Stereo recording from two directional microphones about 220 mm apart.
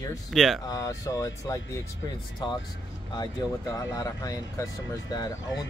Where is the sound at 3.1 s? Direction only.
15° left (ahead or behind).